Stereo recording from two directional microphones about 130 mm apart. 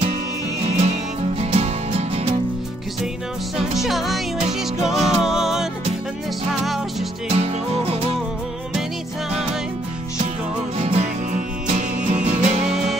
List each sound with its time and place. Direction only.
0.7 s music: 55° right (ahead or behind)
3.8 s music: centre (ahead or behind)
7.2 s music: 50° right (ahead or behind)
10.8 s music: 50° right (ahead or behind)
11.6 s music: 70° right (ahead or behind)
12.6 s music: 5° right (ahead or behind)